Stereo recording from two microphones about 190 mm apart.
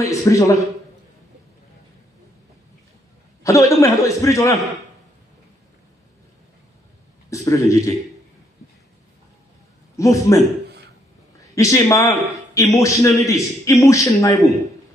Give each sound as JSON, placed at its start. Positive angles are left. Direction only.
{"t": 0.0, "sound": "a man's voice", "side_deg": 15}
{"t": 3.4, "sound": "a man's voice", "side_deg": 15}
{"t": 7.2, "sound": "a man's voice", "side_deg": 15}
{"t": 9.9, "sound": "a man's voice", "side_deg": 15}
{"t": 11.5, "sound": "a man's voice", "side_deg": 15}